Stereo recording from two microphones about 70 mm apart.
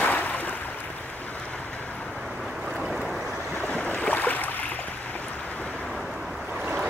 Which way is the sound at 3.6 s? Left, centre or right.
Centre.